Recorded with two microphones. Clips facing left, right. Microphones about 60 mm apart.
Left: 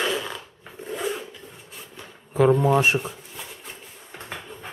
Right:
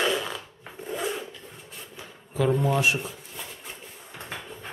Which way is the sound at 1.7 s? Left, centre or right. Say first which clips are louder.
Even; centre.